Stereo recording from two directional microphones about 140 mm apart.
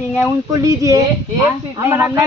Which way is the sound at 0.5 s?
25° right (ahead or behind).